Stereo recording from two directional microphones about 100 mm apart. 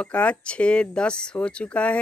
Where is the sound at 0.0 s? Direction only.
10° left (ahead or behind).